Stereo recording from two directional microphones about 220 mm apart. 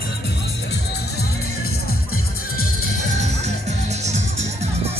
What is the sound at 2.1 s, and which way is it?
Music, 75° left (ahead or behind).